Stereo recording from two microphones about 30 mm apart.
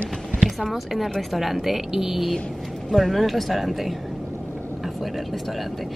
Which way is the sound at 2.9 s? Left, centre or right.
Centre.